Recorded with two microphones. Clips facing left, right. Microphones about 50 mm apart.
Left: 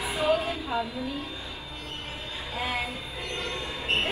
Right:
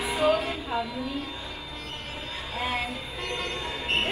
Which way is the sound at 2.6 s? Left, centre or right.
Right.